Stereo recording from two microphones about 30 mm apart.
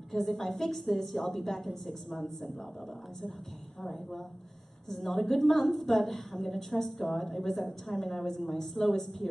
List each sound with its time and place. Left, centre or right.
0.1 s a woman's voice: centre
4.8 s a woman's voice: centre